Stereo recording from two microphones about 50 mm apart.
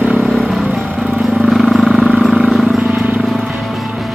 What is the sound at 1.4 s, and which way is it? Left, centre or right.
Wild animals, centre.